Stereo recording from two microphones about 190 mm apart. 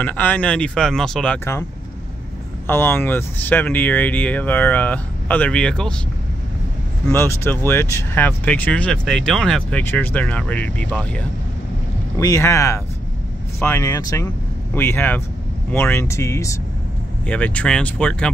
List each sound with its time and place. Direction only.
0.0 s speech: 10° left (ahead or behind)
2.6 s speech: 10° left (ahead or behind)
7.1 s speech: 10° left (ahead or behind)